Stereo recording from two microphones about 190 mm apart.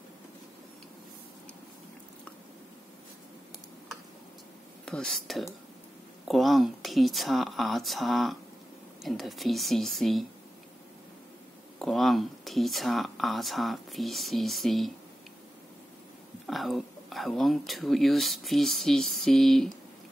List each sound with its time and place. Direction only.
4.8 s speech: 5° left (ahead or behind)
11.8 s speech: centre (ahead or behind)
16.4 s speech: centre (ahead or behind)